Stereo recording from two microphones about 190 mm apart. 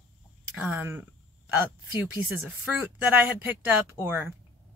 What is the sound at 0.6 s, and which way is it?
Speech, 10° right (ahead or behind).